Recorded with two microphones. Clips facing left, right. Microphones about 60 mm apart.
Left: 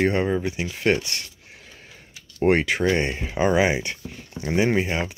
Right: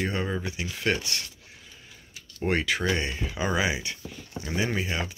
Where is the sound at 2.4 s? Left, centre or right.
Left.